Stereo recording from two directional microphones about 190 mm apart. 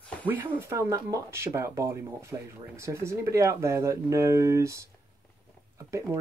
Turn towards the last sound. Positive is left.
turn(degrees=-15)  # may be behind; listen again after turning